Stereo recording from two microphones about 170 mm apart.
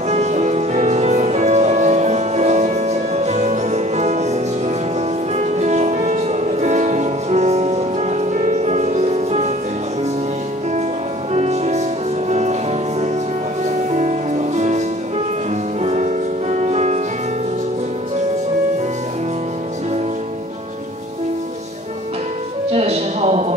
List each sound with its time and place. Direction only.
0.1 s music: 40° right (ahead or behind)
11.3 s music: 40° right (ahead or behind)
13.7 s music: 45° right (ahead or behind)
15.8 s music: 40° right (ahead or behind)
22.7 s a sound: 40° right (ahead or behind)